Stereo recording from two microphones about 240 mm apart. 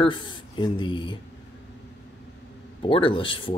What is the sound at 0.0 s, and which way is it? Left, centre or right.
Speech, centre.